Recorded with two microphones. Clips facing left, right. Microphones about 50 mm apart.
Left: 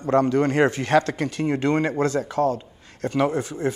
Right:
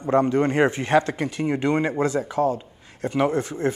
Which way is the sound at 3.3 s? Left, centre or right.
Right.